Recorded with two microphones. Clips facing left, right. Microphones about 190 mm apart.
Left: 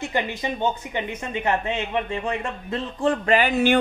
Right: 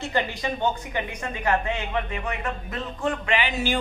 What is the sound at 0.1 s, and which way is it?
Speech, 20° left (ahead or behind).